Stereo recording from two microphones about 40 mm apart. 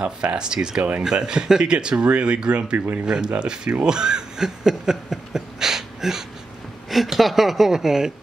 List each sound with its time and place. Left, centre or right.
0.0 s speech: right
3.8 s a sound: centre
6.9 s a woman's voice: centre